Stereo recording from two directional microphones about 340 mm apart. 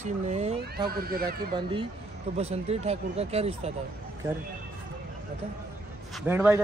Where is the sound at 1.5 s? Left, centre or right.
Centre.